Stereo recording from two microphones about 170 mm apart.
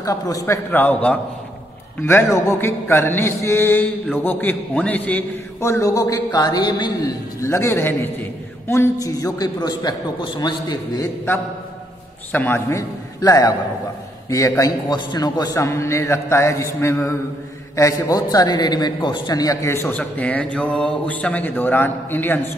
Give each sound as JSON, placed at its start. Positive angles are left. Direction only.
{"t": 0.0, "sound": "a man's voice", "side_deg": 20}
{"t": 0.7, "sound": "a man's voice", "side_deg": 10}
{"t": 12.3, "sound": "a man's voice", "side_deg": 10}